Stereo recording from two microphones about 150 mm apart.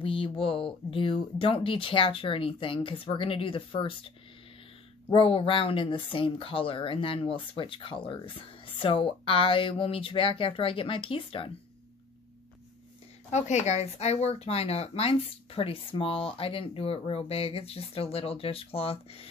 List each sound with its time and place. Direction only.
0.0 s speech: 35° left (ahead or behind)
13.3 s speech: 50° left (ahead or behind)